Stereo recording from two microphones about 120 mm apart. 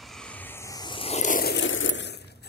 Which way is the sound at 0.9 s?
50° left (ahead or behind).